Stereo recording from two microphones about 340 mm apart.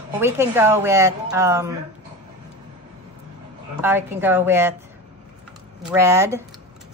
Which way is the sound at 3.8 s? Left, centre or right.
Centre.